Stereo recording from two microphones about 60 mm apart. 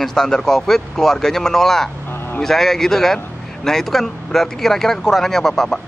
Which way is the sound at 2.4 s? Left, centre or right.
Centre.